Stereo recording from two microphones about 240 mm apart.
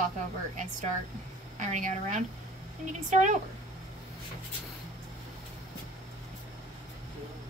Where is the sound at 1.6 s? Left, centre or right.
Right.